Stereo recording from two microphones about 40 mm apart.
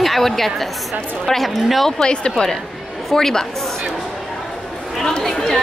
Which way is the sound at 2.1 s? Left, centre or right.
Left.